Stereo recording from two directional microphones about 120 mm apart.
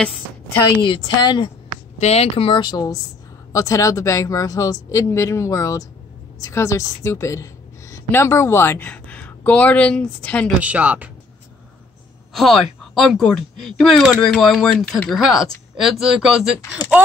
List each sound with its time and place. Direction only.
0.8 s speech: 40° left (ahead or behind)
2.0 s a woman's voice: 65° left (ahead or behind); by 10.5 s 10° left (ahead or behind)
10.6 s speech: 10° right (ahead or behind)
12.4 s speech: centre (ahead or behind)
15.7 s speech: 5° right (ahead or behind)